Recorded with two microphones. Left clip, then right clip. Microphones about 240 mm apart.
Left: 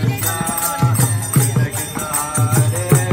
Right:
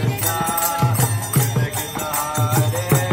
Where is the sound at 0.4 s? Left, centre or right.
Right.